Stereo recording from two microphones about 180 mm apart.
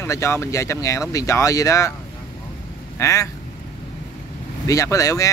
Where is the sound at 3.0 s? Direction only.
15° left (ahead or behind).